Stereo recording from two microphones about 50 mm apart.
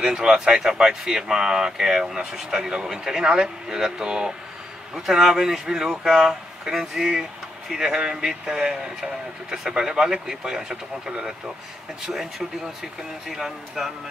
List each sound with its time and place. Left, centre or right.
0.0 s speech: centre